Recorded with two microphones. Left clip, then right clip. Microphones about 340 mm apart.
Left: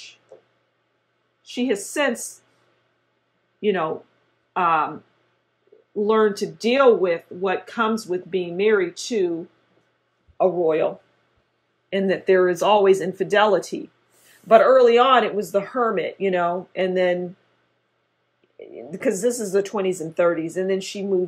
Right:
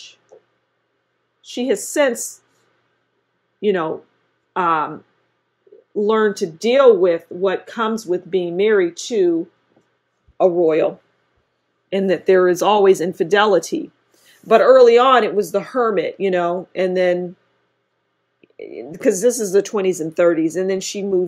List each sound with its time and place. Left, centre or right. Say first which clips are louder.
1.5 s speech: right 4 dB; right
3.6 s speech: right 3 dB; right
5.9 s speech: right 2 dB; right
10.3 s speech: right 4 dB; right
11.9 s speech: right 4 dB; right
18.4 s speech: right 6 dB; right